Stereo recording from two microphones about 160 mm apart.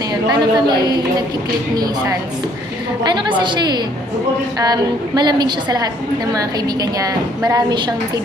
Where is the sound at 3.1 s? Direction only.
30° right (ahead or behind).